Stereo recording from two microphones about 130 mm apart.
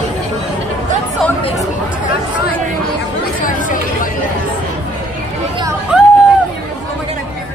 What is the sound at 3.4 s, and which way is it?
Speech, 90° left.